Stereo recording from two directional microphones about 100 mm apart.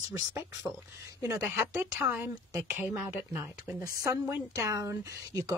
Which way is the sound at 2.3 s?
30° right (ahead or behind).